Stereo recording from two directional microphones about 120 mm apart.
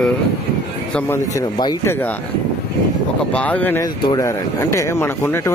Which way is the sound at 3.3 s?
10° left (ahead or behind).